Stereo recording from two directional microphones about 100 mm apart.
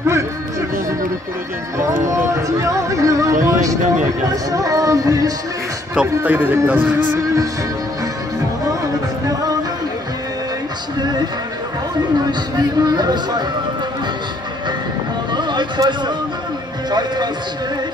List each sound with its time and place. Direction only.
0.0 s speech: 30° right (ahead or behind)
1.8 s speech: 30° right (ahead or behind)
5.9 s speech: 15° right (ahead or behind)
9.2 s music: 35° right (ahead or behind)
11.0 s a sound: 45° right (ahead or behind)
12.3 s speech: 45° right (ahead or behind)
15.3 s a sound: 50° right (ahead or behind)